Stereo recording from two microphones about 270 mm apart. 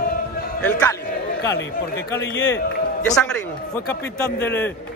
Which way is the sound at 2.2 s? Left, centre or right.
Left.